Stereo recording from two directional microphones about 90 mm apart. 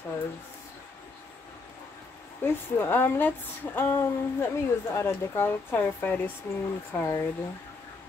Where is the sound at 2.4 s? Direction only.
25° left (ahead or behind).